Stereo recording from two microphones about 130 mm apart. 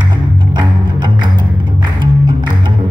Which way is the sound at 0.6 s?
35° right (ahead or behind).